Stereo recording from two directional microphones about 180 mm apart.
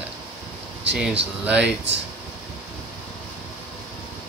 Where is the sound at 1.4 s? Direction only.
5° right (ahead or behind).